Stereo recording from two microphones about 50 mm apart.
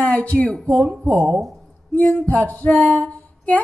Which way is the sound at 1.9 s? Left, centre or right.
Left.